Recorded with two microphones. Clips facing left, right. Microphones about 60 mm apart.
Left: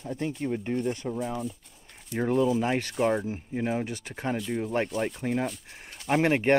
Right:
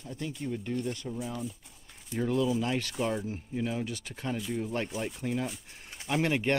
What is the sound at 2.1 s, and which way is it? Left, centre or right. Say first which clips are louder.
Speech: left 4 dB; left.